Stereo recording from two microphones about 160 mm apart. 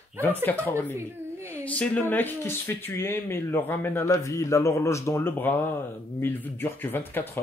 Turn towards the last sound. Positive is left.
turn(degrees=10)  # may be behind; listen again after turning